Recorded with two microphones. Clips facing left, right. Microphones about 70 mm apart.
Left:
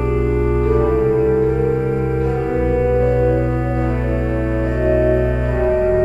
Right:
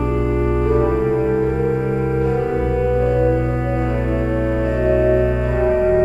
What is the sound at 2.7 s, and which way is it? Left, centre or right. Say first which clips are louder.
Music: left 1 dB; left.